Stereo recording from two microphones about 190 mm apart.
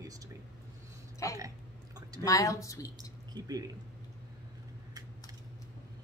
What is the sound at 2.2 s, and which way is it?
Speech, 15° left (ahead or behind).